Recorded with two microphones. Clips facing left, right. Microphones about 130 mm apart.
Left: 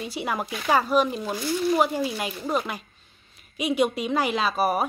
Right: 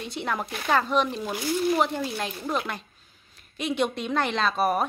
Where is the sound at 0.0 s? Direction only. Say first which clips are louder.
Left 1 dB; 5° left (ahead or behind).